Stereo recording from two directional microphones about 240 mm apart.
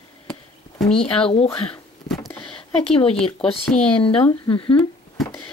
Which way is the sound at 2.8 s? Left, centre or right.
Left.